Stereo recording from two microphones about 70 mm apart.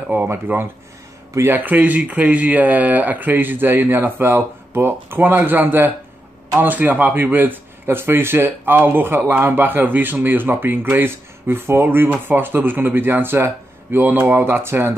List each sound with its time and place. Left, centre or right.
0.1 s speech: right